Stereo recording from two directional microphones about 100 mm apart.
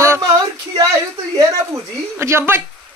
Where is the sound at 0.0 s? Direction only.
30° right (ahead or behind).